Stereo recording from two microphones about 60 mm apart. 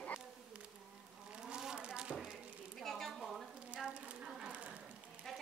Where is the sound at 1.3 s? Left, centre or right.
Centre.